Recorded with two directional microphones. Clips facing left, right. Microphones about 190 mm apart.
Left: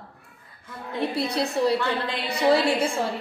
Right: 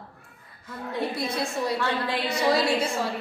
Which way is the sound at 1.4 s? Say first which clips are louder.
Left 5 dB; 35° left (ahead or behind).